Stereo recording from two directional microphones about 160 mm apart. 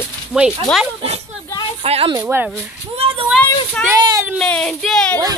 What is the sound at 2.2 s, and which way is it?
Speech, 10° right (ahead or behind).